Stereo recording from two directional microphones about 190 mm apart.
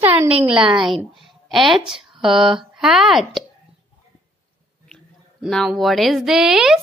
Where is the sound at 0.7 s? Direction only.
Centre (ahead or behind).